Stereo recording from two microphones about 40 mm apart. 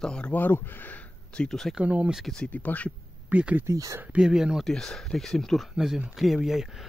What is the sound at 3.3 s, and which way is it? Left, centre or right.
Speech, right.